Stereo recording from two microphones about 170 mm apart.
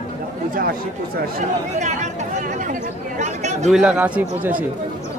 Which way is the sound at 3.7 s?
5° right (ahead or behind).